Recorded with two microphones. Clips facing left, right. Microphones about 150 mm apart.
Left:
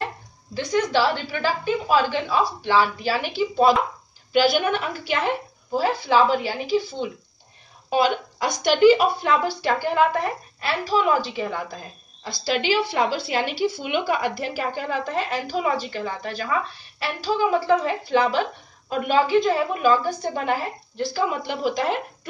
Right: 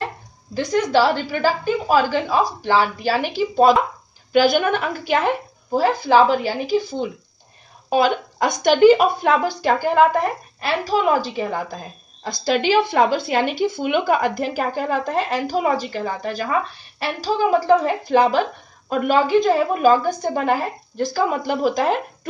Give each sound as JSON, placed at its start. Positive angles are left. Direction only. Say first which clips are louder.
{"t": 0.6, "sound": "a woman's voice", "louder": "right 4 dB", "side_deg": -45}